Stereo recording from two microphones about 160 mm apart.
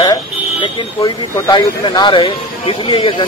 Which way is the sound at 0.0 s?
30° left (ahead or behind).